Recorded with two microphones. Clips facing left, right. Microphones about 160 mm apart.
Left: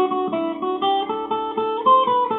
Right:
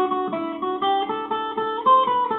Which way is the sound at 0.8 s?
5° left (ahead or behind).